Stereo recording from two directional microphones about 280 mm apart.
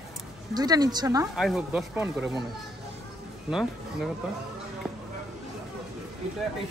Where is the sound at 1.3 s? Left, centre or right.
Centre.